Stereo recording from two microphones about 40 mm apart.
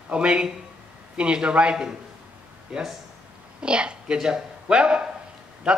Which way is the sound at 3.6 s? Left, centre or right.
Right.